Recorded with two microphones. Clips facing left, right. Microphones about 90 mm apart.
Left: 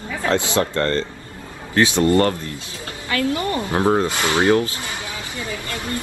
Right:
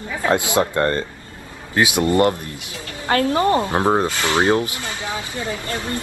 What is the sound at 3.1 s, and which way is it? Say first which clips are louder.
Speech: right 4 dB; 30° right (ahead or behind).